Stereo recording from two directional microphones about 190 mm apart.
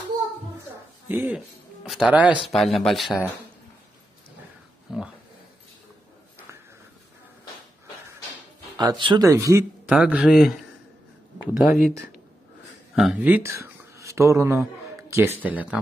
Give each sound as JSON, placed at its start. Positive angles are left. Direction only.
{"t": 1.0, "sound": "speech", "side_deg": -10}
{"t": 4.9, "sound": "speech", "side_deg": -5}
{"t": 8.7, "sound": "speech", "side_deg": -25}
{"t": 9.9, "sound": "speech", "side_deg": -5}
{"t": 11.5, "sound": "speech", "side_deg": 0}
{"t": 12.9, "sound": "speech", "side_deg": -5}